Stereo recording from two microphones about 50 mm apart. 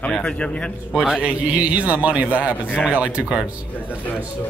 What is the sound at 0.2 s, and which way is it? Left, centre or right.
Speech, left.